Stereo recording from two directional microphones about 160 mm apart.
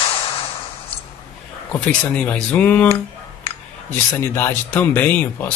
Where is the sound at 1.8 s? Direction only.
5° left (ahead or behind).